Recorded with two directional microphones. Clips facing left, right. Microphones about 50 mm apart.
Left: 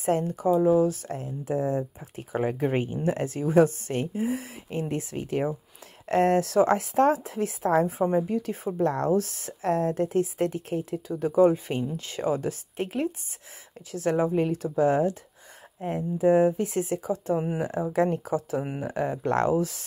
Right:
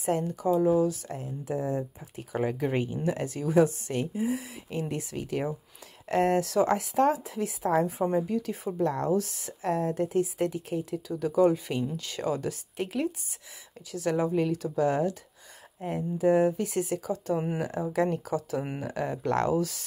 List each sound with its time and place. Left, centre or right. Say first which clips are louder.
0.0 s speech: left 3 dB; left
4.6 s speech: left 3 dB; left
8.0 s speech: left 2 dB; left
8.7 s speech: left 3 dB; left
14.1 s speech: left 2 dB; left